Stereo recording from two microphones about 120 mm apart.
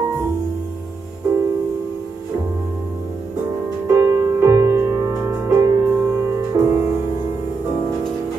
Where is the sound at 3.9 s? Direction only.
25° right (ahead or behind).